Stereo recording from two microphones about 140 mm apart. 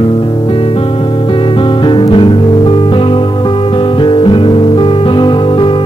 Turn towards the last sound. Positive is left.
turn(degrees=35)  # may be behind; listen again after turning